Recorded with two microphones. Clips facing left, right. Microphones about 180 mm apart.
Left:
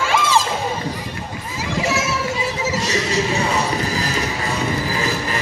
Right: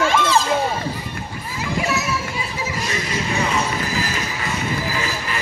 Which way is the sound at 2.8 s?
80° left.